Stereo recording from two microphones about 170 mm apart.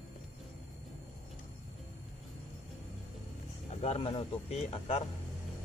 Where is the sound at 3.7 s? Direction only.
35° left (ahead or behind).